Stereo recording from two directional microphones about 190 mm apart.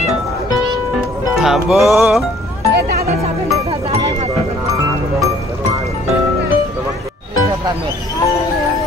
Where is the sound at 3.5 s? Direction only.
20° right (ahead or behind).